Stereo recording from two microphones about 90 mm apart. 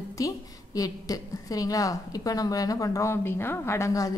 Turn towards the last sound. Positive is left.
turn(degrees=35)  # may be behind; listen again after turning